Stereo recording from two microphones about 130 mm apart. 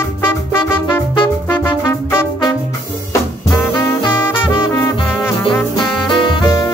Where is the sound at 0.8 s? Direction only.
40° left (ahead or behind).